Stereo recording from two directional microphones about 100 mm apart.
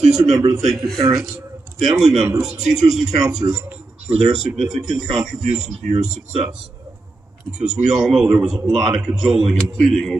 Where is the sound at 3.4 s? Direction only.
55° right (ahead or behind).